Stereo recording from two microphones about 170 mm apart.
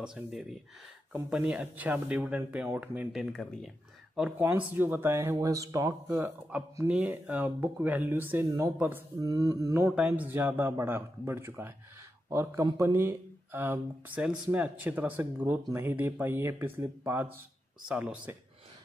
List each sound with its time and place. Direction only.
0.0 s speech: 5° right (ahead or behind)
6.9 s speech: 5° right (ahead or behind)
9.3 s mantra: 20° right (ahead or behind)
9.8 s speech: 5° right (ahead or behind)